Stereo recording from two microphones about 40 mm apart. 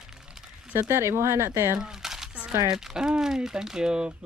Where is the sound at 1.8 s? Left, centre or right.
Centre.